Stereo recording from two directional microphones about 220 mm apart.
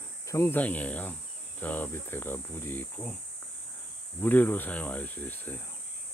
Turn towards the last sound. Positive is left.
turn(degrees=10)  # may be behind; listen again after turning